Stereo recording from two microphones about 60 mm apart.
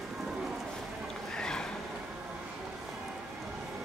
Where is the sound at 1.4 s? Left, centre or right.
Centre.